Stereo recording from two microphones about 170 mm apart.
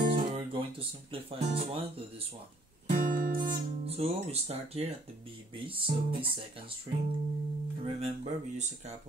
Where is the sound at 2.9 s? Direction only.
55° right (ahead or behind).